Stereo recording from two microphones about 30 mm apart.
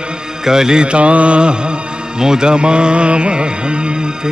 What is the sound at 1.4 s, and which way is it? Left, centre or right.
Music, right.